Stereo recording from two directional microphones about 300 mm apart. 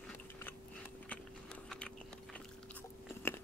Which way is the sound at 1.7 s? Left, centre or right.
Centre.